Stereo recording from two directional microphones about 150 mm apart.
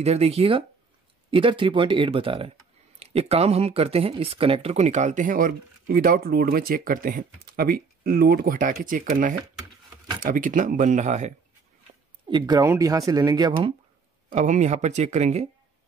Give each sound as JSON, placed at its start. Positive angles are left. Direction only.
{"t": 0.0, "sound": "speech", "side_deg": -45}
{"t": 12.3, "sound": "speech", "side_deg": -30}
{"t": 14.3, "sound": "speech", "side_deg": -50}